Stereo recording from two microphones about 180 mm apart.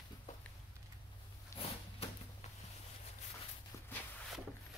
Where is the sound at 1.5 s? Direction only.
15° left (ahead or behind).